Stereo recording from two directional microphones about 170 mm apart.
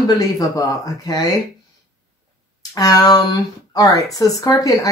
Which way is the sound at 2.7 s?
20° left (ahead or behind).